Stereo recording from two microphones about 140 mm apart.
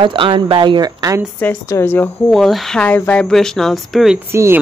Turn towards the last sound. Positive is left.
turn(degrees=-20)  # may be behind; listen again after turning